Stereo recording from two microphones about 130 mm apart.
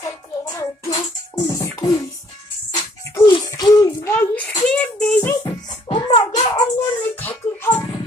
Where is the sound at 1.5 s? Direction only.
25° left (ahead or behind).